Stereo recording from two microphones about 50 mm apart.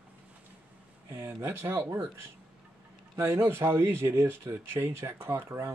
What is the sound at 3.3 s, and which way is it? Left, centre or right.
Speech, right.